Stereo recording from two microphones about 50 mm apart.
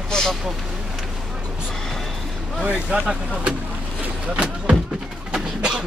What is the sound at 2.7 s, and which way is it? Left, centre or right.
Speech, centre.